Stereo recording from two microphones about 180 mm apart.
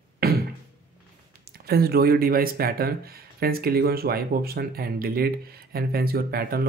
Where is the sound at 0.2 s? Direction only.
60° right (ahead or behind).